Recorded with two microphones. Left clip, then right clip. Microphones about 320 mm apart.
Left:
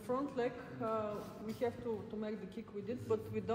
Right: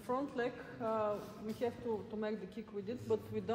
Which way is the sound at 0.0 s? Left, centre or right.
Right.